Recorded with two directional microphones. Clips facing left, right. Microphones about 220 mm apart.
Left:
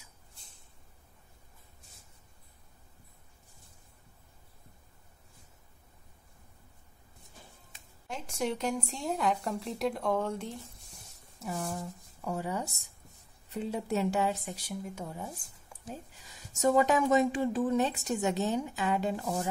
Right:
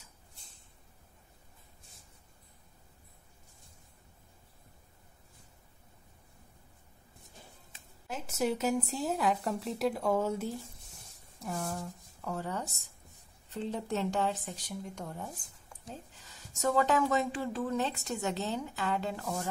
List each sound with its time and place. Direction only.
8.1 s a woman's voice: 5° right (ahead or behind); by 19.5 s 15° left (ahead or behind)